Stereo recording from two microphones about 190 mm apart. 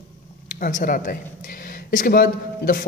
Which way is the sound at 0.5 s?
45° left (ahead or behind).